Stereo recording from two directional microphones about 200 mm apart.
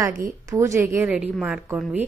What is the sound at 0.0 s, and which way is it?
A woman's voice, 15° right (ahead or behind).